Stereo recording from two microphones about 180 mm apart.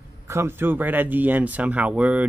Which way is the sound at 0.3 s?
15° right (ahead or behind).